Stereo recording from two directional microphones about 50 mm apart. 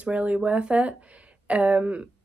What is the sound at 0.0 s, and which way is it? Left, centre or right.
Speech, right.